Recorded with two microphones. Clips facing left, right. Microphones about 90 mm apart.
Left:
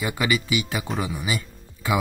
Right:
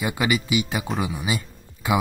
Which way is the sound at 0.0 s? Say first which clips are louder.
Right 1 dB; 20° right (ahead or behind).